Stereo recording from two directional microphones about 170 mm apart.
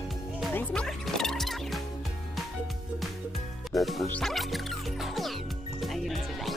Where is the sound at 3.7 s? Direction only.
Centre (ahead or behind).